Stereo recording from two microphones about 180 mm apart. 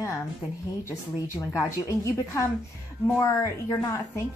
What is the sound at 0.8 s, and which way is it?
A woman's voice, 15° left (ahead or behind).